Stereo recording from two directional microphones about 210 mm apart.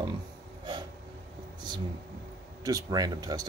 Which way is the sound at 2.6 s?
15° right (ahead or behind).